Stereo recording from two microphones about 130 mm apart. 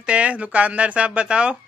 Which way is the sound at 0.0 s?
10° right (ahead or behind).